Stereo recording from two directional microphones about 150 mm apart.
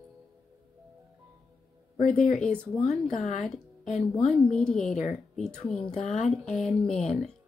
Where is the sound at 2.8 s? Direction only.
50° left (ahead or behind).